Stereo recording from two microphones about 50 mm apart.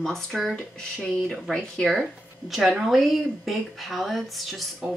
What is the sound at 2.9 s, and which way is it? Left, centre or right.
Speech, centre.